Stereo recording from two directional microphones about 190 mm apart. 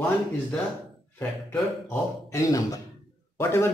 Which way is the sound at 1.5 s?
10° left (ahead or behind).